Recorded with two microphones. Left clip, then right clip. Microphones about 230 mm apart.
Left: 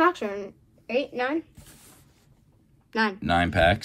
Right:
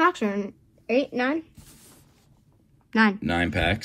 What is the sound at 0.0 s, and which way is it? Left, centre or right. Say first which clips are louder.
A woman's voice: right 1 dB; right.